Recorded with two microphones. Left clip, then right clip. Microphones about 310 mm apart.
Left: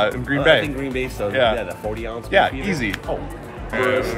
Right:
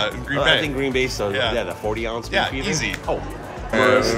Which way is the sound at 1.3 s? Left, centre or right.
Centre.